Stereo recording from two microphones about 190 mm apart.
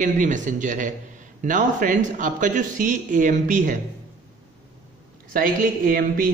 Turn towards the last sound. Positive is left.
turn(degrees=-50)  # may be behind; listen again after turning